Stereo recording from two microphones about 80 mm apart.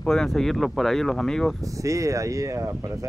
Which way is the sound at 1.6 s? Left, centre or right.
Right.